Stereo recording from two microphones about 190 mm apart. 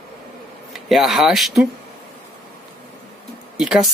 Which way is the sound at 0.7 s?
Centre (ahead or behind).